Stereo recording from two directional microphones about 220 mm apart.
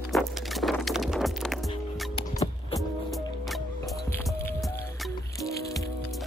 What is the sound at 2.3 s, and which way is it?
Music, 15° left (ahead or behind).